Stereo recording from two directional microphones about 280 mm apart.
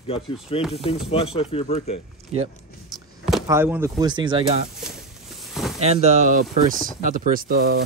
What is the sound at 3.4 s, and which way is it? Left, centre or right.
Speech, centre.